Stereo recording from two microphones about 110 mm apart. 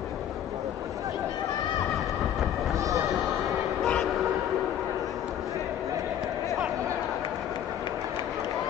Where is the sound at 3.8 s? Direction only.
Centre (ahead or behind).